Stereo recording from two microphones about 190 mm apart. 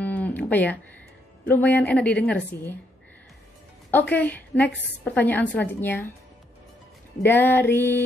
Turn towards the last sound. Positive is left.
turn(degrees=10)  # may be behind; listen again after turning